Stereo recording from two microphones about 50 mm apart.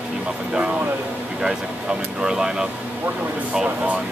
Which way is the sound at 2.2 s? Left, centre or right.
Centre.